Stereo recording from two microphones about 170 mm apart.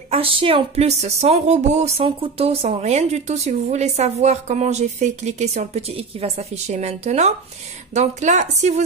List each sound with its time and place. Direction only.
0.1 s a woman's voice: 35° right (ahead or behind)